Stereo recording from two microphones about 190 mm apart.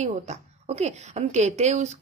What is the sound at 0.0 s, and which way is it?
A woman's voice, 35° right (ahead or behind).